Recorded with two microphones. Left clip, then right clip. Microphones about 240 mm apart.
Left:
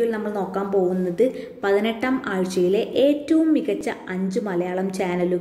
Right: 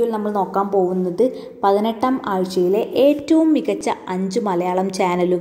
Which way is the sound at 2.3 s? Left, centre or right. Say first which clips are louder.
Even; centre.